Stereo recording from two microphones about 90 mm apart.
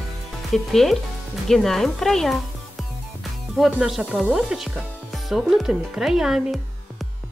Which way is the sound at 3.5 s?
Centre (ahead or behind).